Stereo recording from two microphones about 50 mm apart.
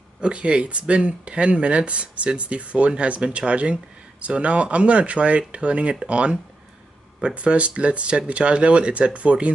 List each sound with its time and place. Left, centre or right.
0.2 s speech: right